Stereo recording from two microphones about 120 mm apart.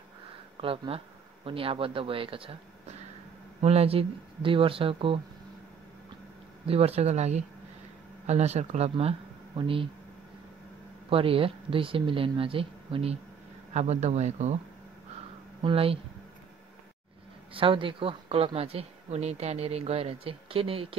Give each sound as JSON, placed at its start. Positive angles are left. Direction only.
{"t": 0.6, "sound": "speech", "side_deg": -50}
{"t": 3.6, "sound": "speech", "side_deg": -60}
{"t": 6.6, "sound": "speech", "side_deg": -55}
{"t": 9.6, "sound": "speech", "side_deg": -50}
{"t": 11.1, "sound": "speech", "side_deg": -50}
{"t": 13.7, "sound": "speech", "side_deg": -70}
{"t": 15.6, "sound": "speech", "side_deg": -50}
{"t": 17.6, "sound": "speech", "side_deg": -45}